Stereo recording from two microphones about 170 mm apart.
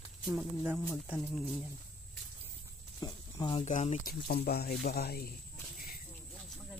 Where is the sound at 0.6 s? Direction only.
10° right (ahead or behind).